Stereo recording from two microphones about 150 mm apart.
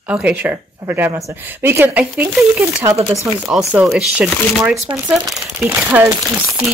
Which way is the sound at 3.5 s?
5° right (ahead or behind).